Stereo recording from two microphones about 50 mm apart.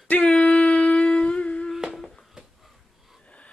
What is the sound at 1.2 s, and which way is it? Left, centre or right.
Humming, centre.